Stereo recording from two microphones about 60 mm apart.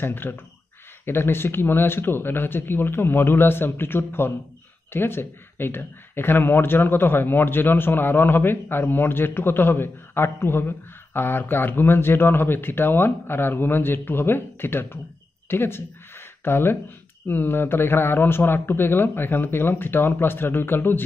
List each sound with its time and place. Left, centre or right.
0.0 s speech: left
15.4 s a sound: left
17.3 s speech: left